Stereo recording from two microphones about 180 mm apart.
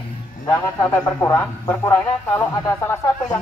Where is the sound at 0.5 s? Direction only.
15° left (ahead or behind).